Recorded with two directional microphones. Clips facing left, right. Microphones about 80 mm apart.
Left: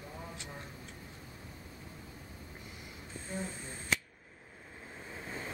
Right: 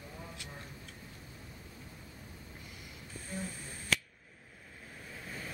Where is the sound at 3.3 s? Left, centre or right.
Left.